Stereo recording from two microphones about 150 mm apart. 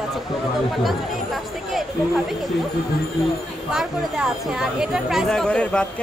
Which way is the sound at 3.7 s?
5° right (ahead or behind).